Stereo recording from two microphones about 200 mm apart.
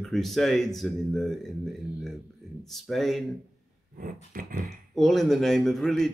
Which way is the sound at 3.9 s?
45° right (ahead or behind).